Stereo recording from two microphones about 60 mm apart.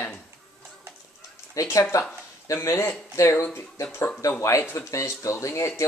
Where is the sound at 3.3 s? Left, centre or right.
Left.